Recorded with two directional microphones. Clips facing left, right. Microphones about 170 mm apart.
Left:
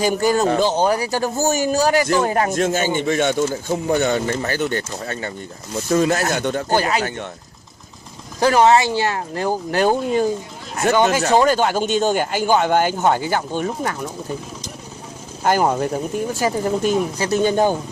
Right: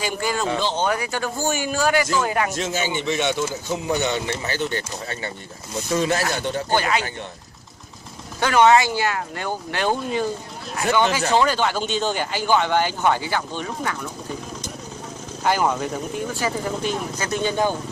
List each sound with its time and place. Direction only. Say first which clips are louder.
0.0 s speech: left 7 dB; 40° left (ahead or behind)
2.5 s speech: left 6 dB; 50° left (ahead or behind)
8.4 s speech: left 2 dB; 35° left (ahead or behind)
15.4 s speech: left 4 dB; 45° left (ahead or behind)